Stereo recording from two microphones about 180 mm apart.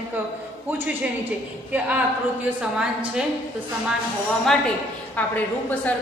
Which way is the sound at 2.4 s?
5° right (ahead or behind).